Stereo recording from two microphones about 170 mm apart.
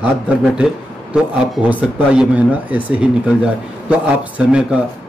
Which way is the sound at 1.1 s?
5° right (ahead or behind).